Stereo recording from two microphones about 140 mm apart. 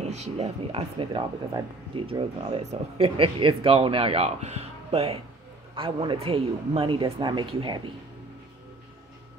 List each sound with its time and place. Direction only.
0.0 s speech: 50° right (ahead or behind); by 7.9 s 35° right (ahead or behind)